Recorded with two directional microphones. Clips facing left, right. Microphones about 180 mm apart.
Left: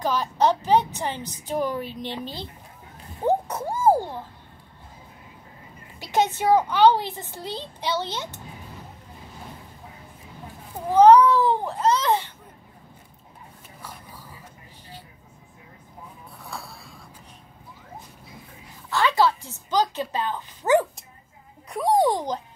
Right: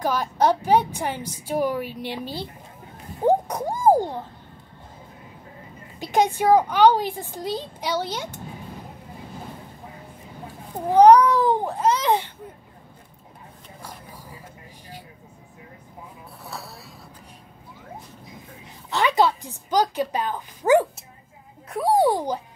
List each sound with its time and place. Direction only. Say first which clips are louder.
0.0 s a woman's voice: right 1 dB; 10° right (ahead or behind)
3.2 s a sound: right 3 dB; 15° right (ahead or behind)
5.9 s a woman's voice: right 2 dB; 15° right (ahead or behind)
10.9 s cat: right 1 dB; 15° right (ahead or behind)
18.9 s a woman's voice: right 1 dB; 20° right (ahead or behind)